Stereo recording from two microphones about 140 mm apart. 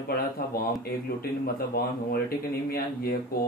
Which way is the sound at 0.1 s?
90° left.